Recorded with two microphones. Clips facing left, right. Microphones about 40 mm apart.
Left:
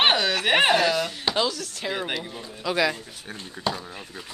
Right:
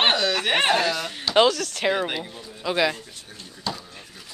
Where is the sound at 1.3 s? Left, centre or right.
Right.